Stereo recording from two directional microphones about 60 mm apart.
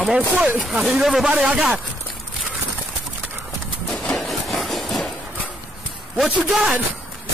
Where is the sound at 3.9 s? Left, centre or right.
Centre.